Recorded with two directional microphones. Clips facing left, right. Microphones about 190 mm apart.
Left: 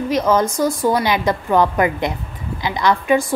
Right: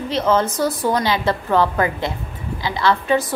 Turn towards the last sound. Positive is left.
turn(degrees=15)  # may be behind; listen again after turning